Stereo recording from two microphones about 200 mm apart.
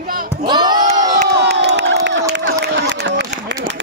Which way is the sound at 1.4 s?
55° right (ahead or behind).